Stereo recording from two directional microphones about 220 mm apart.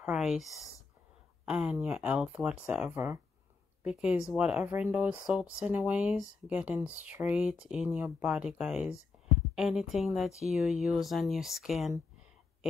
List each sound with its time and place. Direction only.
0.0 s speech: 5° right (ahead or behind)